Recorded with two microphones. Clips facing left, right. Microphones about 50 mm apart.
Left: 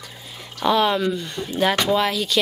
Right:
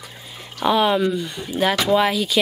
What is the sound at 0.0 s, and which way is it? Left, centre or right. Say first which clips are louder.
A woman's voice: even; centre.